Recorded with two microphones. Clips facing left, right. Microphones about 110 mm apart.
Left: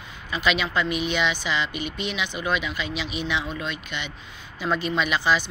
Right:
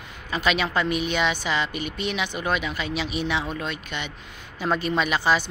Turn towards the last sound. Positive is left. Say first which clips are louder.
# right 1 dB
turn(degrees=-40)  # may be behind; listen again after turning